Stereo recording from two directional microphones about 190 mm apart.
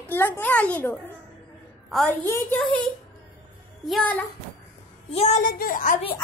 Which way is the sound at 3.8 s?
5° left (ahead or behind).